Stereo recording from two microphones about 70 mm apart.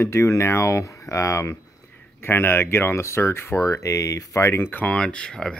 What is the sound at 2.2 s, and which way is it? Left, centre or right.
Speech, left.